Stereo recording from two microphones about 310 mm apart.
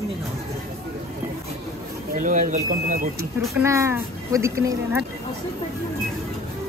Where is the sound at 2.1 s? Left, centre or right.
Right.